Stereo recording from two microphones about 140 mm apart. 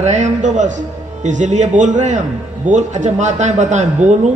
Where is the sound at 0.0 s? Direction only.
55° right (ahead or behind).